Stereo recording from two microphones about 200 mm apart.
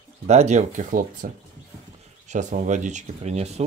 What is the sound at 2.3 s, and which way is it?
Speech, 35° right (ahead or behind).